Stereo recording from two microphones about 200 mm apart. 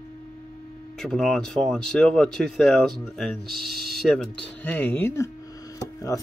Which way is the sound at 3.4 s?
50° right (ahead or behind).